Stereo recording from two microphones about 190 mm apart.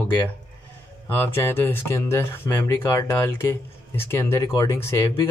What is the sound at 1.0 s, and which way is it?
Speech, 10° left (ahead or behind).